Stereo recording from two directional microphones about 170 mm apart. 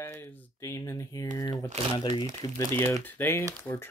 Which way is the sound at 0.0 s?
15° left (ahead or behind).